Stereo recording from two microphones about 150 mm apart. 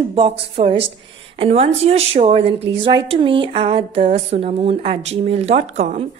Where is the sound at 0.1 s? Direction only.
35° right (ahead or behind).